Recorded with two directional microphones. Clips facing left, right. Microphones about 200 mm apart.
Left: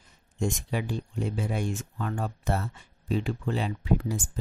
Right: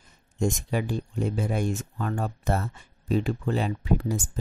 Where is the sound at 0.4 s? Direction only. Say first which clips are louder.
Right 3 dB; 45° right (ahead or behind).